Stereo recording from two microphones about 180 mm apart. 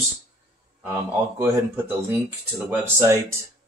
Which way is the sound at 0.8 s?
10° right (ahead or behind).